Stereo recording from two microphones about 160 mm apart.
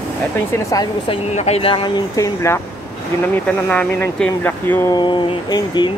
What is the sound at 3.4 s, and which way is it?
Speech, 5° left (ahead or behind).